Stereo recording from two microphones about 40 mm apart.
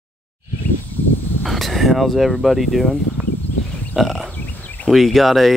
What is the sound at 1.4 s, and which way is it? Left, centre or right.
Speech, centre.